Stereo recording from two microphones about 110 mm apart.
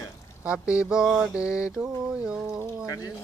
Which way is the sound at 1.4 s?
10° right (ahead or behind).